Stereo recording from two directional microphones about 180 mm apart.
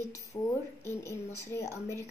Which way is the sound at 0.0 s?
15° left (ahead or behind).